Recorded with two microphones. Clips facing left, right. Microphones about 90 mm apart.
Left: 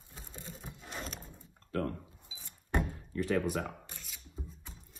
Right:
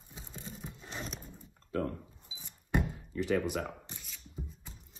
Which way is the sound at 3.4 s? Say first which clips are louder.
Even; centre (ahead or behind).